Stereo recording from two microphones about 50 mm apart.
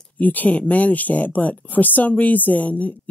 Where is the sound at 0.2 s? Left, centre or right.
Left.